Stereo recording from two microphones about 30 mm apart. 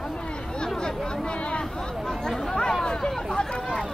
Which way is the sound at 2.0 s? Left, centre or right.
Left.